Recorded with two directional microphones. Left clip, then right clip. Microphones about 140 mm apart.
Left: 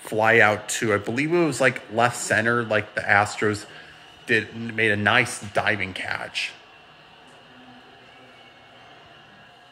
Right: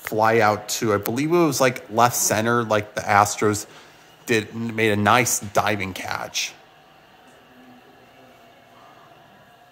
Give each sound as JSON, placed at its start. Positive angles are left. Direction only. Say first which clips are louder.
{"t": 0.1, "sound": "a man's voice", "louder": "even", "side_deg": -25}